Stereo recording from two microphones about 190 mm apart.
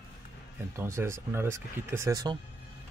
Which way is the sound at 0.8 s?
15° right (ahead or behind).